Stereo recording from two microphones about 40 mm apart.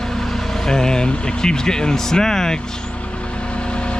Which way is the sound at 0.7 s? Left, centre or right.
Centre.